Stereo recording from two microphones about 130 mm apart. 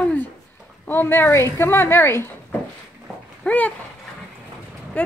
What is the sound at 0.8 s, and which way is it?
A woman's voice, 15° left (ahead or behind).